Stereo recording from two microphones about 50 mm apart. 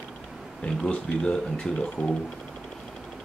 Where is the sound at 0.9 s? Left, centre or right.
Centre.